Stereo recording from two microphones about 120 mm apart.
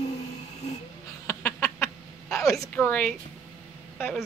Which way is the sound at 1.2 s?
20° left (ahead or behind).